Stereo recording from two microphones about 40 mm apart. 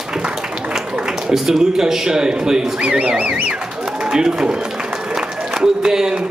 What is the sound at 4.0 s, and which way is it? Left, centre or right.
Speech, centre.